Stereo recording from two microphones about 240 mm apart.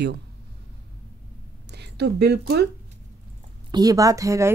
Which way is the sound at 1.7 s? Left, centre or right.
Right.